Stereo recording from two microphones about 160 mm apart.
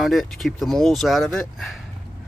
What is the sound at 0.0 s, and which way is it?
Speech, centre (ahead or behind).